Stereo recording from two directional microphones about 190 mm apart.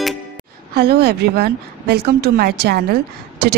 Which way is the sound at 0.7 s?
55° right (ahead or behind).